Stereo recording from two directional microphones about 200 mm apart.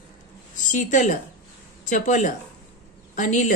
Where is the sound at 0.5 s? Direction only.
40° left (ahead or behind).